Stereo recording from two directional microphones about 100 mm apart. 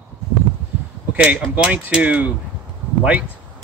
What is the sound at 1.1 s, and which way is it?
Speech, 15° right (ahead or behind).